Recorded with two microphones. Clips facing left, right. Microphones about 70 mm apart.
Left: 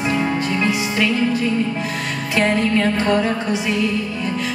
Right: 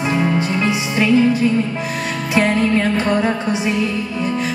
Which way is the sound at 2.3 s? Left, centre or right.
Right.